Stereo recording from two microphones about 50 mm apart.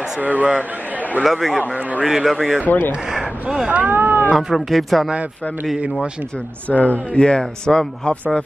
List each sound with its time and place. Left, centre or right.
0.2 s a man's voice: right
1.2 s speech: centre
2.6 s speech: left
3.2 s speech: centre
3.6 s speech: right
4.4 s speech: centre
6.7 s speech: left